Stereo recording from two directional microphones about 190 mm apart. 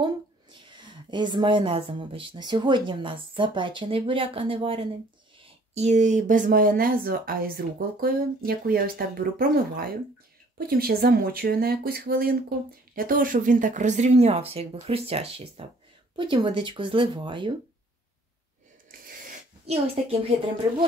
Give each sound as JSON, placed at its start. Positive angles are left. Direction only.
{"t": 0.0, "sound": "a woman's voice", "side_deg": -25}
{"t": 18.9, "sound": "a sound", "side_deg": -50}
{"t": 19.6, "sound": "speech", "side_deg": -35}